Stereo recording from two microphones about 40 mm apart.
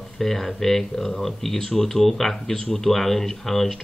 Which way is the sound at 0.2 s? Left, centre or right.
Centre.